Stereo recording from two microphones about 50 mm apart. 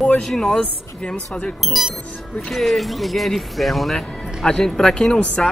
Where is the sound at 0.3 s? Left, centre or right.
Centre.